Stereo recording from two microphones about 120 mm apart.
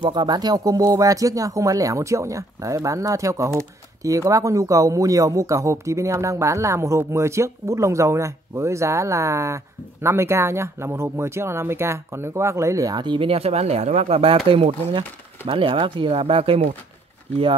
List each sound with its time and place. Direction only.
0.0 s speech: 40° right (ahead or behind); by 16.7 s 55° right (ahead or behind)